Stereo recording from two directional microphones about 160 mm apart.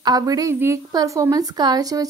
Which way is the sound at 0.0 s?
25° right (ahead or behind).